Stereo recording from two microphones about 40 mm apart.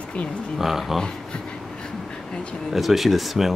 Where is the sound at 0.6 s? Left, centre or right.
Centre.